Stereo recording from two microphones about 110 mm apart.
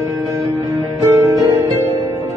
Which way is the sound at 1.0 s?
25° right (ahead or behind).